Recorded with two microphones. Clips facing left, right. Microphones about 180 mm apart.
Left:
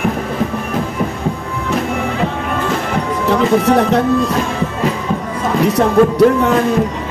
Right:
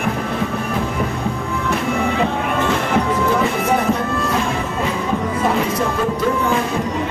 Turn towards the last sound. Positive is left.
turn(degrees=70)  # may be behind; listen again after turning